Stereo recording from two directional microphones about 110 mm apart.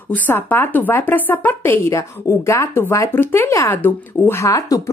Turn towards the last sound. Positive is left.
turn(degrees=30)  # may be behind; listen again after turning